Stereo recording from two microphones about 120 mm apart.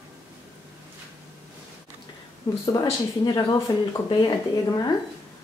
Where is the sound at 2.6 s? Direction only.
30° left (ahead or behind).